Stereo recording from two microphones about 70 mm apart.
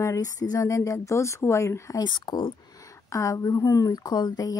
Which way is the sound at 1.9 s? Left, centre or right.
Left.